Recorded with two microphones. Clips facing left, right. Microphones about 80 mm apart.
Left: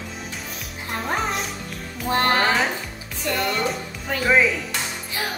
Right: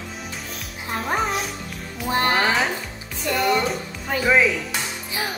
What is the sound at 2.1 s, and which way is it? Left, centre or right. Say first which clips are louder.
Speech: even; centre.